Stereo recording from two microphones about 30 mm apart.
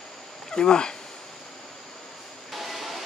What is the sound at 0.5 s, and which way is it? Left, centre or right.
Speech, left.